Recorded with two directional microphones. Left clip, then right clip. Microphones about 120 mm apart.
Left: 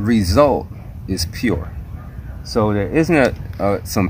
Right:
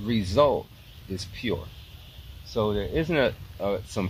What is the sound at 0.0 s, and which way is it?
Speech, 15° right (ahead or behind).